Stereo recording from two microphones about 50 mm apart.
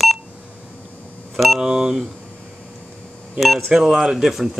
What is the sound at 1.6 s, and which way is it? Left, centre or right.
Speech, centre.